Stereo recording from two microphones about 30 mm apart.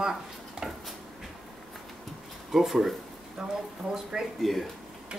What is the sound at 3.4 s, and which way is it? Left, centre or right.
Speech, right.